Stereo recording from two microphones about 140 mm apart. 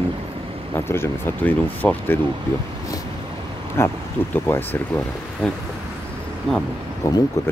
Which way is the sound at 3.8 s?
20° left (ahead or behind).